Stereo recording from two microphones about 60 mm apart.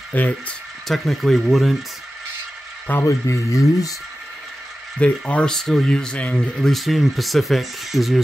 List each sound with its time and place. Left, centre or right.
0.1 s speech: left
0.8 s speech: centre
3.1 s speech: left
4.9 s speech: left
5.5 s speech: centre
6.6 s speech: centre